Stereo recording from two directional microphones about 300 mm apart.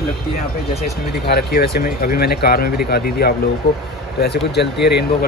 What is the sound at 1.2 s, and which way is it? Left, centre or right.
Speech, left.